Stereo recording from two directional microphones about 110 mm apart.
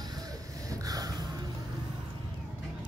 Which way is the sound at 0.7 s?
35° right (ahead or behind).